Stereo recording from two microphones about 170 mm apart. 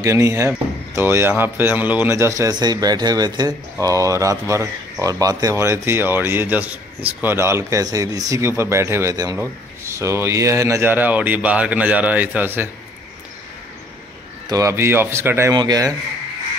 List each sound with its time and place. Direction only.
0.0 s speech: 20° right (ahead or behind)
14.5 s speech: 15° right (ahead or behind)